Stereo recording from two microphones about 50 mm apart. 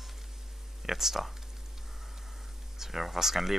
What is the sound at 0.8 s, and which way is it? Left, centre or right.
Speech, centre.